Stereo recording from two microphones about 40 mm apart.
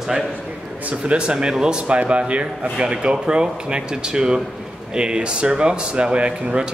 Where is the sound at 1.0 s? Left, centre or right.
Right.